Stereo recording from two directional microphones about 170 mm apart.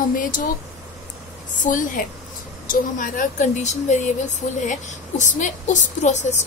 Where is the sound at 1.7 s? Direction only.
50° left (ahead or behind).